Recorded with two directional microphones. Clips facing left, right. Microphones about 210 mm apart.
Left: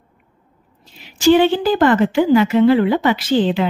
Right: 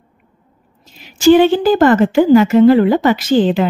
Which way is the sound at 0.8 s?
45° right (ahead or behind).